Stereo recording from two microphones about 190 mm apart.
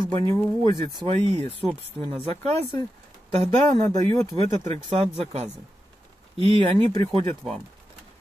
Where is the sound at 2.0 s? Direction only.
30° right (ahead or behind).